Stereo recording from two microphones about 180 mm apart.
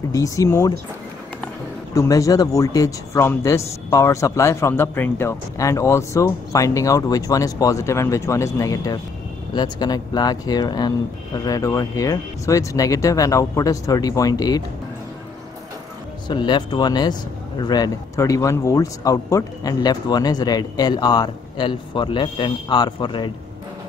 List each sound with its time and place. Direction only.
0.1 s speech: 20° left (ahead or behind)
2.0 s speech: 20° left (ahead or behind)
16.3 s speech: 25° left (ahead or behind)